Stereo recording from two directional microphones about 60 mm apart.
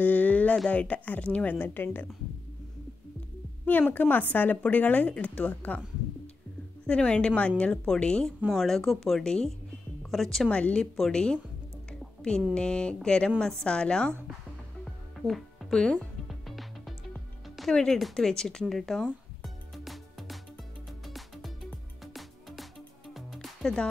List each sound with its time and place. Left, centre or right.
0.0 s a sound: left
0.7 s a woman's voice: left
1.6 s speech: left
3.9 s a woman's voice: left
6.9 s a woman's voice: centre
10.5 s a woman's voice: centre
12.0 s music: centre
12.5 s a woman's voice: centre
14.9 s music: centre
17.6 s a woman's voice: centre
19.4 s music: centre